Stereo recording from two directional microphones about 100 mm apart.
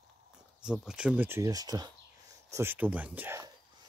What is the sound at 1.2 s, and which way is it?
Speech, 30° right (ahead or behind).